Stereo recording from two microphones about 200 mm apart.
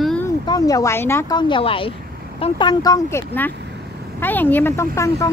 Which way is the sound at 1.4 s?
25° left (ahead or behind).